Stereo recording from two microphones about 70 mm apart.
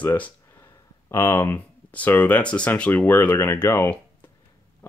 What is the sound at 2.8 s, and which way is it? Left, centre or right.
Speech, left.